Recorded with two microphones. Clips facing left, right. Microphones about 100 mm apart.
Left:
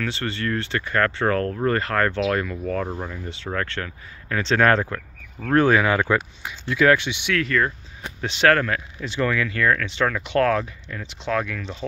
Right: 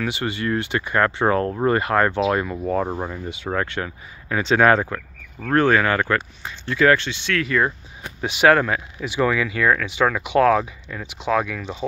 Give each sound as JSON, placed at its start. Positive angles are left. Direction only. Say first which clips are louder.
{"t": 0.0, "sound": "speech", "louder": "right 2 dB", "side_deg": -15}
{"t": 7.1, "sound": "speech", "louder": "even", "side_deg": 15}
{"t": 8.2, "sound": "speech", "louder": "right 3 dB", "side_deg": -10}